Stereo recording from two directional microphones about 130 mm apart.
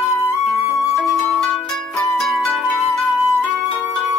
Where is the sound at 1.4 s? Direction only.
5° left (ahead or behind).